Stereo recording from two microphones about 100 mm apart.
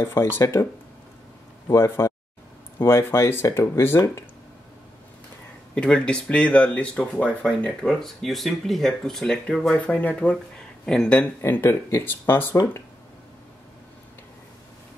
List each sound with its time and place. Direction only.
0.4 s speech: 30° left (ahead or behind)
1.7 s speech: 30° left (ahead or behind)
5.8 s speech: 10° left (ahead or behind)
11.4 s speech: 20° left (ahead or behind)